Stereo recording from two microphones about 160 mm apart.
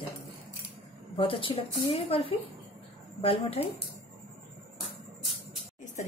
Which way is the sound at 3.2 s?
35° left (ahead or behind).